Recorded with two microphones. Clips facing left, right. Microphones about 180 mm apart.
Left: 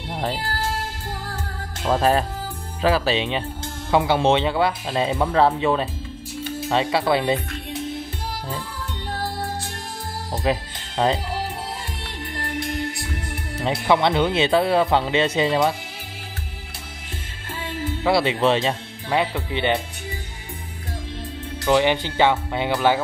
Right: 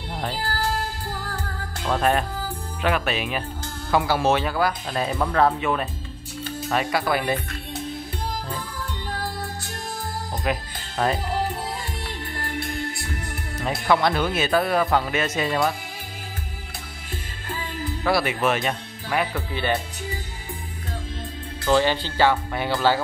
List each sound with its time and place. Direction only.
1.9 s speech: 30° left (ahead or behind)
10.3 s music: 25° left (ahead or behind)
13.6 s speech: 25° left (ahead or behind)
18.0 s speech: 25° left (ahead or behind)
21.6 s speech: 15° left (ahead or behind)